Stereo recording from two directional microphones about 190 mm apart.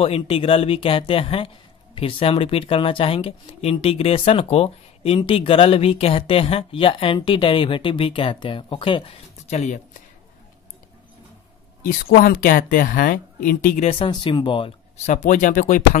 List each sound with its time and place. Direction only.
0.0 s speech: 30° left (ahead or behind)
11.8 s speech: 50° left (ahead or behind); by 14.7 s 25° left (ahead or behind)
15.0 s speech: 40° left (ahead or behind)